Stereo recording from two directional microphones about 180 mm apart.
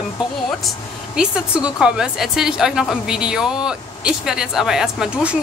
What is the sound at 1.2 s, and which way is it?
A woman's voice, 5° right (ahead or behind).